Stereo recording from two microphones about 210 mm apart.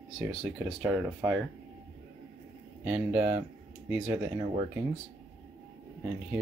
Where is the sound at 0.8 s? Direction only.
5° right (ahead or behind).